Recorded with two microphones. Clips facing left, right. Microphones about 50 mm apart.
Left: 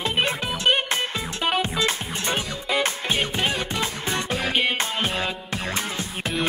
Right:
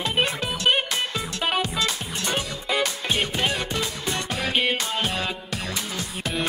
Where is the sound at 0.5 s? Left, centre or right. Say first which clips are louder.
Left 1 dB; centre.